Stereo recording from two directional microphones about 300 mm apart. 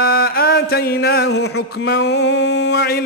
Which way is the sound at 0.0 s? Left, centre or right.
Left.